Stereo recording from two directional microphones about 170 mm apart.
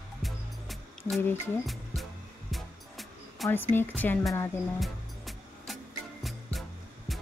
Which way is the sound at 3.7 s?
10° left (ahead or behind).